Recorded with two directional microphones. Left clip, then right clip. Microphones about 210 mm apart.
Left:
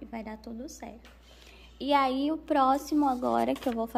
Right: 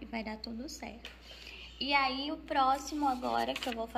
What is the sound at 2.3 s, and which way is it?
Speech, 50° left (ahead or behind).